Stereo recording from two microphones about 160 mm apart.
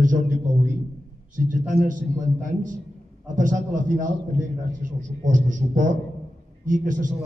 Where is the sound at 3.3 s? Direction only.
55° right (ahead or behind).